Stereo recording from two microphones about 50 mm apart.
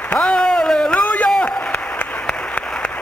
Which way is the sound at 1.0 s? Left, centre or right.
Left.